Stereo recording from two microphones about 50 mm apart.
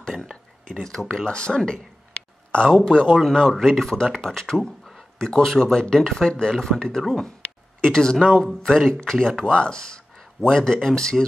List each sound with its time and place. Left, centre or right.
0.8 s speech: centre
8.4 s speech: centre